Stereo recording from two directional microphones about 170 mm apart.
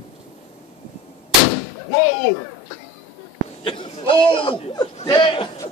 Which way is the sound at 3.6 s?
30° left (ahead or behind).